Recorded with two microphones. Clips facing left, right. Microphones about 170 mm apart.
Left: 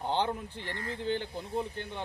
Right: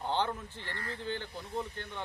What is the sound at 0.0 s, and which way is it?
Speech, 15° left (ahead or behind).